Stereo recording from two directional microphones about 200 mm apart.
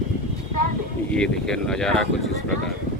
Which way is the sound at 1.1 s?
5° left (ahead or behind).